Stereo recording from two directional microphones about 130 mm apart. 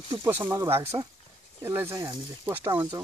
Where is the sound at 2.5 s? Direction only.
20° right (ahead or behind).